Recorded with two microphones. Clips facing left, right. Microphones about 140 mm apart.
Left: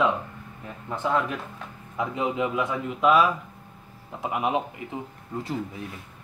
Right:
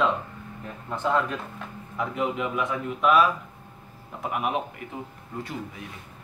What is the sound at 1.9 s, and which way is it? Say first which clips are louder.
Speech: left 1 dB; 20° left (ahead or behind).